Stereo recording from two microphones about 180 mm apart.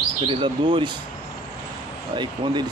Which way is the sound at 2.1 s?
25° right (ahead or behind).